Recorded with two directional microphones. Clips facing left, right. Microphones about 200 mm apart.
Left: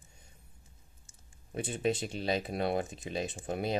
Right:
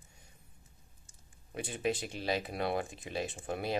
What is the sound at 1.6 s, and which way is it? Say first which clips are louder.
Speech: left 3 dB; 25° left (ahead or behind).